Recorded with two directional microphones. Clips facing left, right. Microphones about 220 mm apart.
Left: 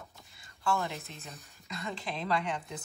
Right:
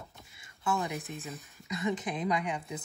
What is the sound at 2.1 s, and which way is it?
Speech, 15° right (ahead or behind).